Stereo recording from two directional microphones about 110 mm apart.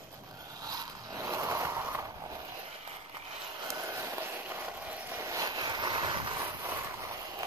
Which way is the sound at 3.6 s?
25° right (ahead or behind).